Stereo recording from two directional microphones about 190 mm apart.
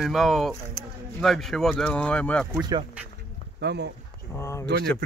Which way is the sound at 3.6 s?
65° right (ahead or behind).